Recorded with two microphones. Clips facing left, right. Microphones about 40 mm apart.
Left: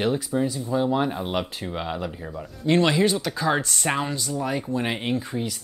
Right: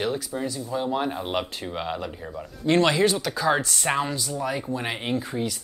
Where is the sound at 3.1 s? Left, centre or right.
Left.